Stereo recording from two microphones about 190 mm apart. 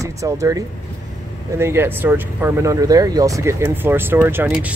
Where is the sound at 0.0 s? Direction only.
15° right (ahead or behind).